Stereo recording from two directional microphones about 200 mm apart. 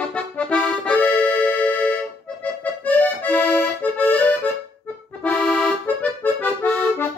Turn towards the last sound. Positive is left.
turn(degrees=10)  # may be behind; listen again after turning